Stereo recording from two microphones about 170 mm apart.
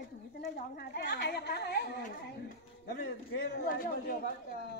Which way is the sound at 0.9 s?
70° left (ahead or behind).